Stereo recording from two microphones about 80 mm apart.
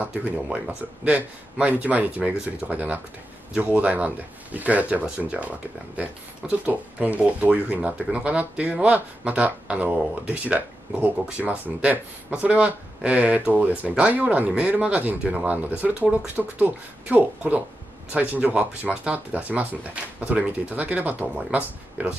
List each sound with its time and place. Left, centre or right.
0.0 s speech: centre